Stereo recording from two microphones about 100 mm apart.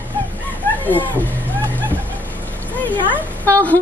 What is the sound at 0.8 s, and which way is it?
Speech, 15° left (ahead or behind).